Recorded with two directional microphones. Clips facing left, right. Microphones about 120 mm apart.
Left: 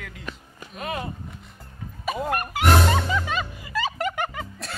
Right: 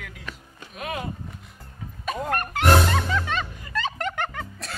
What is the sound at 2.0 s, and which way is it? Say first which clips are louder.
Music: left 1 dB; 5° left (ahead or behind).